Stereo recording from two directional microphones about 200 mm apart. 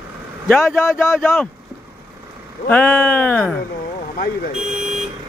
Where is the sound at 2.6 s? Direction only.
10° left (ahead or behind).